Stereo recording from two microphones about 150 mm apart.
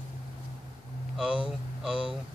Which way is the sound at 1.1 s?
5° right (ahead or behind).